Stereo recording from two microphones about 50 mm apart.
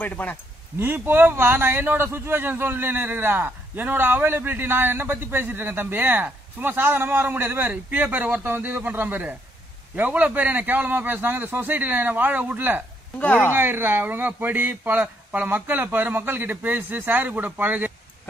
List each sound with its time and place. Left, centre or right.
0.0 s speech: left
0.7 s a man's voice: right
2.0 s a man's voice: right
7.7 s speech: right